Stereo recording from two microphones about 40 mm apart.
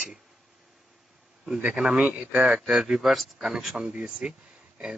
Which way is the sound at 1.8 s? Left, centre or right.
Right.